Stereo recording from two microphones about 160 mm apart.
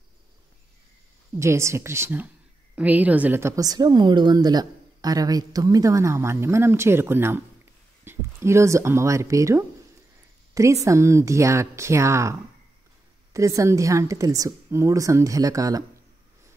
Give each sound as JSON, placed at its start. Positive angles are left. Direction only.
{"t": 1.4, "sound": "a woman's voice", "side_deg": -15}